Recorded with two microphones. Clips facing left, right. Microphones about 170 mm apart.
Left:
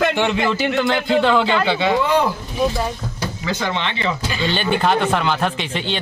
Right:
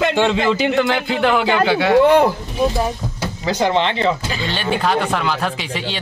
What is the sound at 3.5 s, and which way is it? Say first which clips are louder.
Speech: right 7 dB; 40° right (ahead or behind).